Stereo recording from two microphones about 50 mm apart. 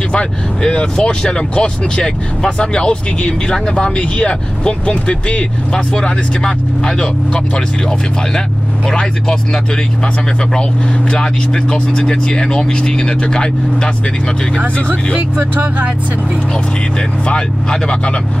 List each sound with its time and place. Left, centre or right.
0.1 s speech: centre
11.1 s speech: centre
17.3 s speech: centre